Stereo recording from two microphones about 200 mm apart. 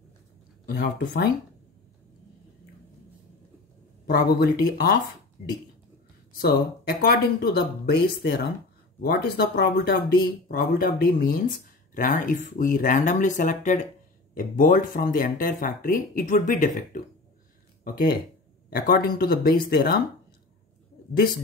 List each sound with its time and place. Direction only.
0.7 s speech: 50° left (ahead or behind)
4.1 s speech: 50° left (ahead or behind)
6.4 s speech: 50° left (ahead or behind)